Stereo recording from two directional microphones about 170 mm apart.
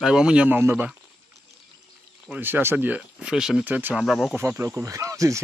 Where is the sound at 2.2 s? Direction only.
10° right (ahead or behind).